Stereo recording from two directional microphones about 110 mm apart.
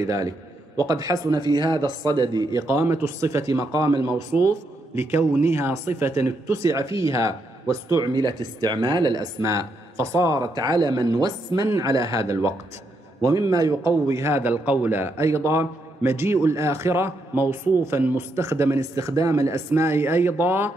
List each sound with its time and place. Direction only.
0.0 s speech: 30° right (ahead or behind)